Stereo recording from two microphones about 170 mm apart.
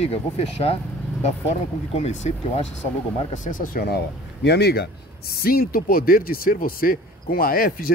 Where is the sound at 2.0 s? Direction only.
40° left (ahead or behind); by 7.9 s 60° left (ahead or behind).